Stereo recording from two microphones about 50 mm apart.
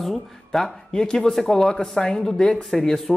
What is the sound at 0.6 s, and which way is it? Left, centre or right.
Speech, centre.